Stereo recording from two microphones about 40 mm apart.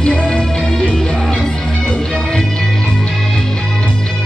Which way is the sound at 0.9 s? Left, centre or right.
Centre.